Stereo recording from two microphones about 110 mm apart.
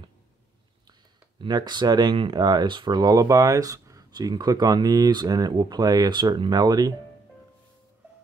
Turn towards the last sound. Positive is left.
turn(degrees=-35)  # may be behind; listen again after turning